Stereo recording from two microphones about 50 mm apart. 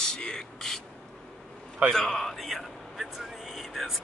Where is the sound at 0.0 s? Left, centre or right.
Centre.